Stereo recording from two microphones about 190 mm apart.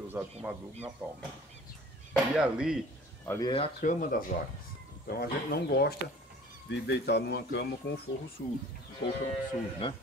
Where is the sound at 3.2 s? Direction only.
15° left (ahead or behind).